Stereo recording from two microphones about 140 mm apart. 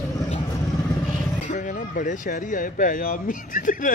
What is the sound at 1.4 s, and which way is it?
Speech, 65° left (ahead or behind).